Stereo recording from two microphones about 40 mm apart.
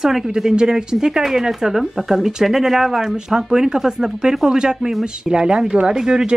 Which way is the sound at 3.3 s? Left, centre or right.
Centre.